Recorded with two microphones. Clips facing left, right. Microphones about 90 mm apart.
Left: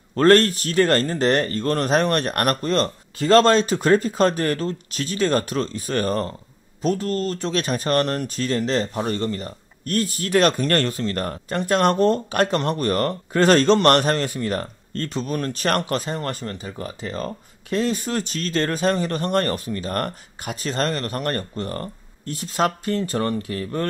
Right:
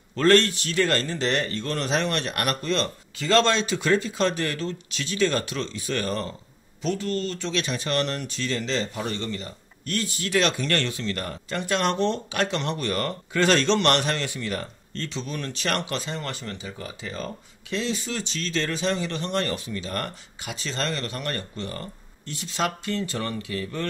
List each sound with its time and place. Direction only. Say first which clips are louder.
0.1 s speech: left 4 dB; 45° left (ahead or behind)